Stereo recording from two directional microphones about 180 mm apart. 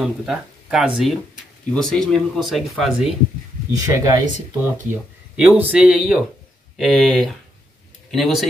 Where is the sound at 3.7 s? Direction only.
20° right (ahead or behind).